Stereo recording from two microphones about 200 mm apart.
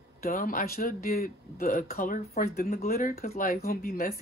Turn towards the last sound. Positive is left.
turn(degrees=50)  # may be behind; listen again after turning